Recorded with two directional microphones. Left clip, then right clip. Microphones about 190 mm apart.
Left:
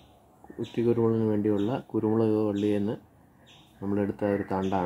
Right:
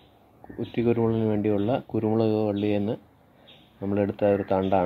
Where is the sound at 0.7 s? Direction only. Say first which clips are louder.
Right 1 dB; 35° right (ahead or behind).